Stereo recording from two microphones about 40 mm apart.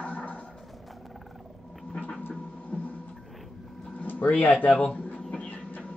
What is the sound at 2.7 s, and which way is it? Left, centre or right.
Music, left.